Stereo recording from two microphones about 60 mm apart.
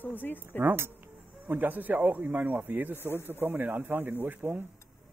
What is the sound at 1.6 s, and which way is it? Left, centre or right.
Speech, right.